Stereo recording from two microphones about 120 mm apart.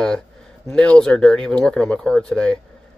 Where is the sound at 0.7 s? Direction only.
5° left (ahead or behind).